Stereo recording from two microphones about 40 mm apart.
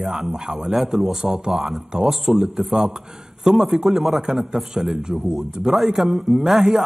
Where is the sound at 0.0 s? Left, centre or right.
Centre.